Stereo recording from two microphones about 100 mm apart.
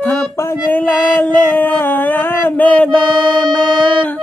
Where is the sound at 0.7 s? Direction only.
15° left (ahead or behind).